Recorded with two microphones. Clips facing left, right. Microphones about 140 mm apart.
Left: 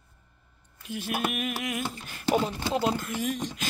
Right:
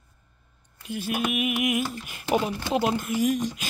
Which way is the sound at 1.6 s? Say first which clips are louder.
Right 6 dB; 15° right (ahead or behind).